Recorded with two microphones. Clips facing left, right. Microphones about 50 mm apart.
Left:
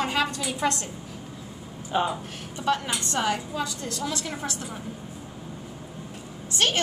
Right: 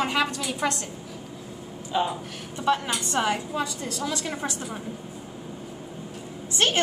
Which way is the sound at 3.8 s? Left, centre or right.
Centre.